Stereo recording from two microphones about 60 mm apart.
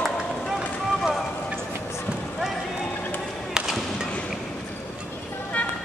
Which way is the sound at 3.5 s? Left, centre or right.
Centre.